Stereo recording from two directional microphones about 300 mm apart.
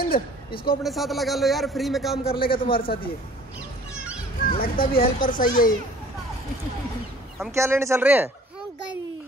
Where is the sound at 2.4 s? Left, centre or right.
Left.